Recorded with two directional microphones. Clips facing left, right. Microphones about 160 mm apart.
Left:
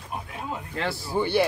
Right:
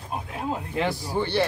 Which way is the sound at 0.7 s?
15° right (ahead or behind).